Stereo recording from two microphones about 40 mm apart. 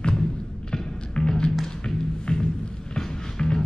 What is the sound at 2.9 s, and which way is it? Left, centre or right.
Music, centre.